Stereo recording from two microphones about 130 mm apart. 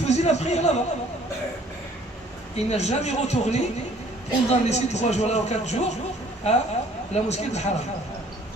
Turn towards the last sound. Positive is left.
turn(degrees=60)  # may be behind; listen again after turning